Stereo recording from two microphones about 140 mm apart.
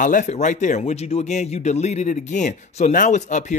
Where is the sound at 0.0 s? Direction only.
65° left (ahead or behind).